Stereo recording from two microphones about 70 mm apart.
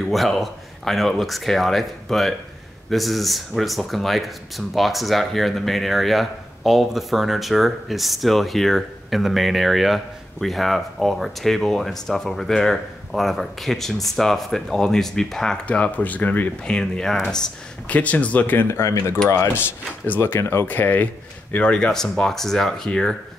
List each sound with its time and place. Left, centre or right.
0.1 s speech: centre
17.8 s speech: left
18.7 s speech: left
20.2 s speech: left; by 23.1 s centre